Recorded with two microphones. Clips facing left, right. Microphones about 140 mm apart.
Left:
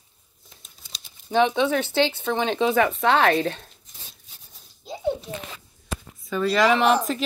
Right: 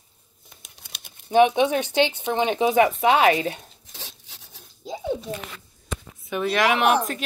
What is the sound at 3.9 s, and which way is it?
Filing, 85° right.